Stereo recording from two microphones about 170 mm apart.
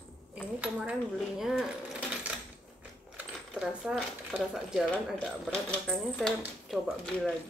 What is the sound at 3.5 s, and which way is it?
Speech, 5° right (ahead or behind).